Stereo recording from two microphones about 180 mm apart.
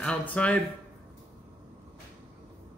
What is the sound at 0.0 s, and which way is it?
Speech, 5° left (ahead or behind).